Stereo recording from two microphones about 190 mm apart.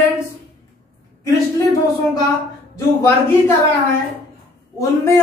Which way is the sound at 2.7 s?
15° left (ahead or behind).